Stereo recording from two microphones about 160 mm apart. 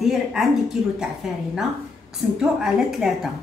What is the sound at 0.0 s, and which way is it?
A woman's voice, centre (ahead or behind).